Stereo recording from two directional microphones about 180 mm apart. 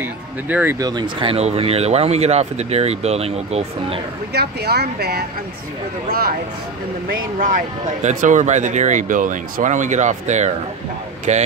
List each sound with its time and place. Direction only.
0.0 s speech: 10° right (ahead or behind)
0.7 s speech: 20° right (ahead or behind)
4.3 s speech: 65° right (ahead or behind)
7.3 s speech: 50° right (ahead or behind)